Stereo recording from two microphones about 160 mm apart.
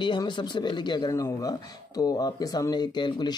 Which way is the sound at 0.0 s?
30° left (ahead or behind).